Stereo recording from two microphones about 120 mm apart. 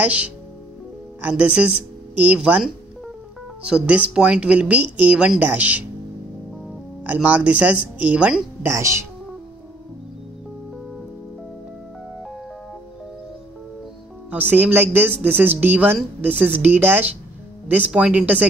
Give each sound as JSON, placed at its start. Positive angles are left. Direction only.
{"t": 0.0, "sound": "speech", "side_deg": -10}
{"t": 7.1, "sound": "speech", "side_deg": -15}
{"t": 8.6, "sound": "speech", "side_deg": -25}
{"t": 14.3, "sound": "speech", "side_deg": -15}